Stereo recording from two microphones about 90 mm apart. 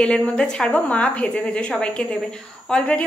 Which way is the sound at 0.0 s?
10° left (ahead or behind).